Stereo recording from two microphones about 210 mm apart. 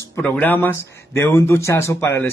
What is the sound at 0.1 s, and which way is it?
Speech, 10° left (ahead or behind).